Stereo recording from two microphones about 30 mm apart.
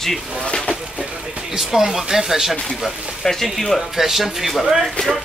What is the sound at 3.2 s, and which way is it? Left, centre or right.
Speech, centre.